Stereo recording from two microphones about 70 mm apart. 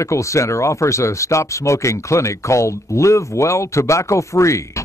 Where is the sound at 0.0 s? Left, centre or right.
Left.